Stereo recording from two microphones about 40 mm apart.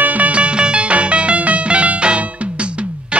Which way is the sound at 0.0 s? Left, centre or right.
Right.